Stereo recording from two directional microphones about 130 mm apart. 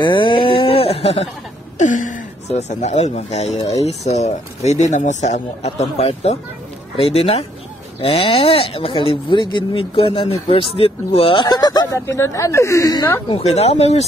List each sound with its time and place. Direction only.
0.0 s a sound: 40° left (ahead or behind)
1.8 s speech: 75° left (ahead or behind); by 13.2 s 25° left (ahead or behind)
13.3 s speech: 55° left (ahead or behind)